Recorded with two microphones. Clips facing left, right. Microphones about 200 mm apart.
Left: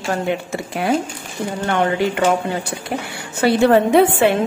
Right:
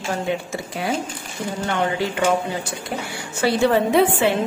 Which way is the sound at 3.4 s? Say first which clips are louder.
Left 4 dB; 55° left (ahead or behind).